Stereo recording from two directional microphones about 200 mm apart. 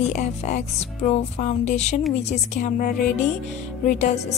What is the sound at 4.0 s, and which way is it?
Speech, 35° left (ahead or behind).